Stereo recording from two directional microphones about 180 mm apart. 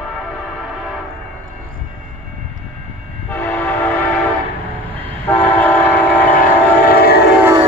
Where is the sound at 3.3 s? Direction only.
10° left (ahead or behind).